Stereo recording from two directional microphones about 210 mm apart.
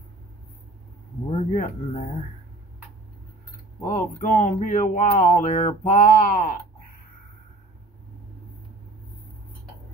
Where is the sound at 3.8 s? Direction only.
40° left (ahead or behind).